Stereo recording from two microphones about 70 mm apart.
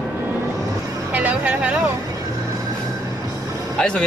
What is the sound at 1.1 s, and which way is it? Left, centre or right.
Speech, right.